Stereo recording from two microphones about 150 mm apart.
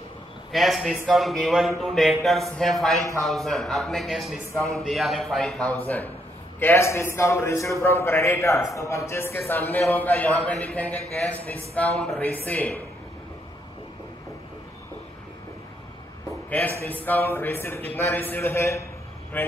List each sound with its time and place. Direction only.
0.5 s a man's voice: centre (ahead or behind)
16.4 s a man's voice: 10° left (ahead or behind)